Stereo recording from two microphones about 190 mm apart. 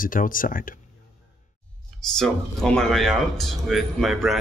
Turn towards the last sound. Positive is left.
turn(degrees=0)  # may be behind; listen again after turning